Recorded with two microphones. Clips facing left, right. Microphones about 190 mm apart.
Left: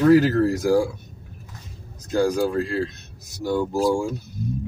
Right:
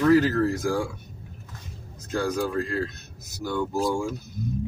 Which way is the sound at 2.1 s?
35° left (ahead or behind).